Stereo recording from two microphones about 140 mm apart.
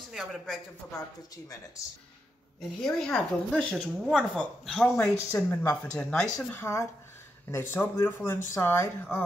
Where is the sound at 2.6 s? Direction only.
5° left (ahead or behind).